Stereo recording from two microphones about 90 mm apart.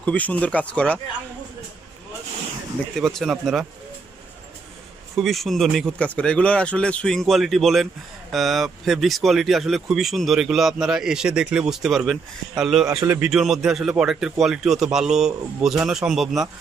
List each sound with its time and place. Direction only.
0.0 s speech: 15° left (ahead or behind)
2.9 s speech: 5° left (ahead or behind)
5.1 s speech: centre (ahead or behind)
5.9 s speech: 15° left (ahead or behind); by 12.8 s centre (ahead or behind)
13.0 s speech: 30° right (ahead or behind)
13.3 s speech: 5° right (ahead or behind)